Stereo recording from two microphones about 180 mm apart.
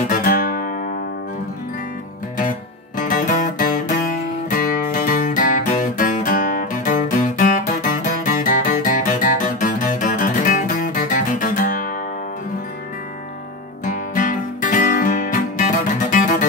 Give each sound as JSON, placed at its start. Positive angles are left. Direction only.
{"t": 0.1, "sound": "music", "side_deg": 50}
{"t": 3.0, "sound": "music", "side_deg": 45}
{"t": 13.8, "sound": "music", "side_deg": 45}